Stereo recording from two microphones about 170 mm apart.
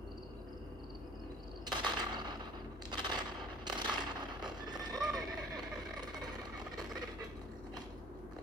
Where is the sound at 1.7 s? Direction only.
25° right (ahead or behind).